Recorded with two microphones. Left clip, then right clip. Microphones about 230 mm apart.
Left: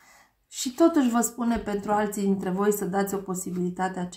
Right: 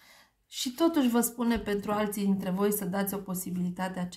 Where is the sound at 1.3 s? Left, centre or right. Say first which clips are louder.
Left 2 dB; right.